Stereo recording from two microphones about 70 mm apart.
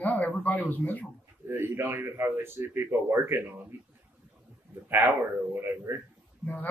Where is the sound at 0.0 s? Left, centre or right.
Left.